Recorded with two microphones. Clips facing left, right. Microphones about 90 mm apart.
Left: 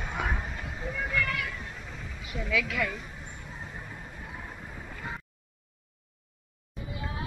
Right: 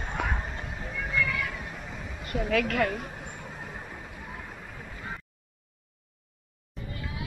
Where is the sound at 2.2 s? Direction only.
55° right (ahead or behind).